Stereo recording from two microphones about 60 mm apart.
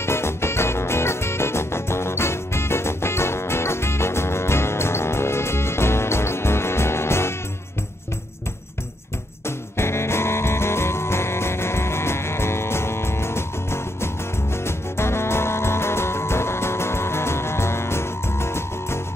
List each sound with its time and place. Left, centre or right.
0.0 s music: left
9.8 s music: left